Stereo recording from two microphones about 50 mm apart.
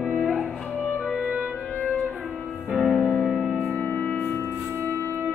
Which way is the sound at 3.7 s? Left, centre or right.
Left.